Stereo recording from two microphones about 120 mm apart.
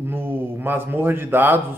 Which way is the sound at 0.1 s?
15° right (ahead or behind).